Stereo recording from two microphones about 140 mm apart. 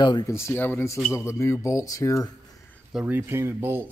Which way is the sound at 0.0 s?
30° left (ahead or behind).